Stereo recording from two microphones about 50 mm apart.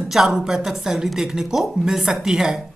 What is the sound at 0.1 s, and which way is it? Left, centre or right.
Speech, centre.